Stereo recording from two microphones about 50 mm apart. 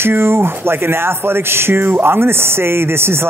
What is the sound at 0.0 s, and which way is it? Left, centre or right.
Speech, right.